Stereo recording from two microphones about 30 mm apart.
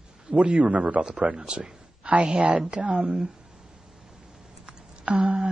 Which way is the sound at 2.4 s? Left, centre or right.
Right.